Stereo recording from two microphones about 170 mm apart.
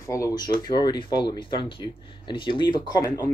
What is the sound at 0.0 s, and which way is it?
Speech, 20° left (ahead or behind).